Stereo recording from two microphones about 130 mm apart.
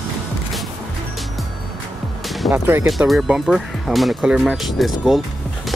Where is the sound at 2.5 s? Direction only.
15° right (ahead or behind).